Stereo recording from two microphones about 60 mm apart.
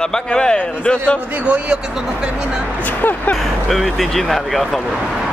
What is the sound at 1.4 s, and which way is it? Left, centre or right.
Speech, centre.